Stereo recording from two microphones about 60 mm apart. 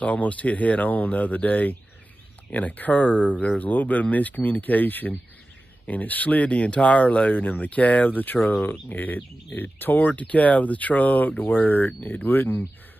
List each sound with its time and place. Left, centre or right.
0.0 s speech: left